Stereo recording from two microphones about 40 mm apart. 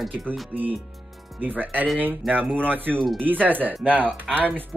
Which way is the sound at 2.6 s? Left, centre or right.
Right.